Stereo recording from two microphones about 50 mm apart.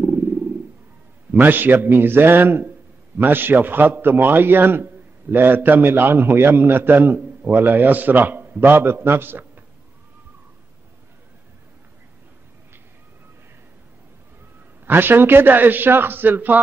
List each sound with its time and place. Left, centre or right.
0.0 s wild animals: right
1.3 s a man's voice: right
14.9 s a man's voice: right